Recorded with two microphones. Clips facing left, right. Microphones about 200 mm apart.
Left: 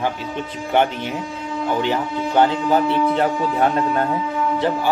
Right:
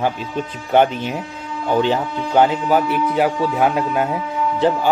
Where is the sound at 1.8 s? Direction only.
15° right (ahead or behind).